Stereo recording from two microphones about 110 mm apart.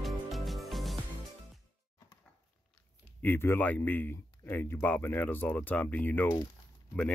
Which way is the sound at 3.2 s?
20° left (ahead or behind).